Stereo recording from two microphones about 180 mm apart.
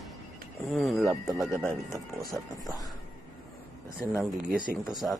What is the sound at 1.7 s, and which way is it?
Speech, 15° left (ahead or behind).